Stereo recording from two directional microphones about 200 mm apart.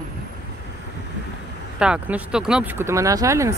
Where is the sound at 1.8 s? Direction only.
5° right (ahead or behind).